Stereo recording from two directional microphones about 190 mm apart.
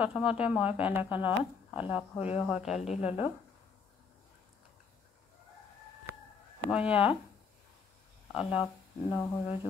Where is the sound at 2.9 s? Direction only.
35° left (ahead or behind).